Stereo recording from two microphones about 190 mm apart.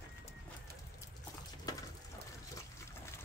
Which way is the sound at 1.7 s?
20° left (ahead or behind).